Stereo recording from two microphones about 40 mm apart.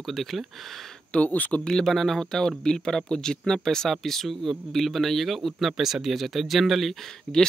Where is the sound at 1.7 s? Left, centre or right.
Centre.